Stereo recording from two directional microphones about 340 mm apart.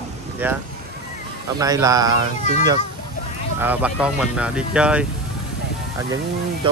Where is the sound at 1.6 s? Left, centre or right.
Centre.